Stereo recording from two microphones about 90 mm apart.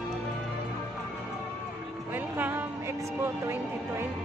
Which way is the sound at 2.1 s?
20° right (ahead or behind).